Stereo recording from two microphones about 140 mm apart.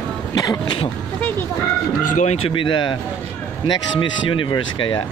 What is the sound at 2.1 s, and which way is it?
Speech, 55° left (ahead or behind).